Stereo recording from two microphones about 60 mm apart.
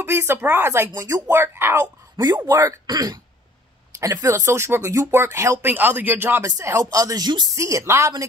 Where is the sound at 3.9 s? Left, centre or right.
Right.